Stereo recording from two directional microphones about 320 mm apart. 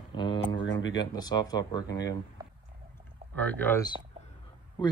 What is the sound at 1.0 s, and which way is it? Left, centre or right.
Speech, centre.